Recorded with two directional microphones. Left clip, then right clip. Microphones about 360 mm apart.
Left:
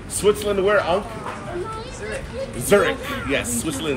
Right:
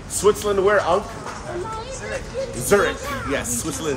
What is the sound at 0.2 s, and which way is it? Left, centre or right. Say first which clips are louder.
Speech: right 1 dB; centre.